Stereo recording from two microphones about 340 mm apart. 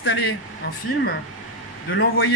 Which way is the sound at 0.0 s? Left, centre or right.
Left.